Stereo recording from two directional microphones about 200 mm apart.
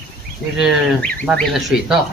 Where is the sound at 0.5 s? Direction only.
Centre (ahead or behind).